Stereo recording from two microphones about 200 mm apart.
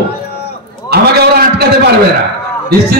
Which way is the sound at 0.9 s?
55° right (ahead or behind).